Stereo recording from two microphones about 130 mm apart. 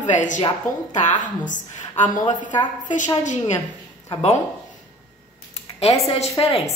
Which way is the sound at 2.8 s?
70° left (ahead or behind).